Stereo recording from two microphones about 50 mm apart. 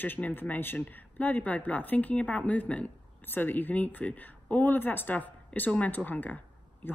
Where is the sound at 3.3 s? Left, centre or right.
Left.